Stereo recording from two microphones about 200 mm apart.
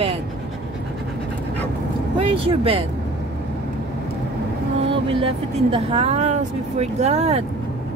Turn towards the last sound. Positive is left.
turn(degrees=-30)  # may be behind; listen again after turning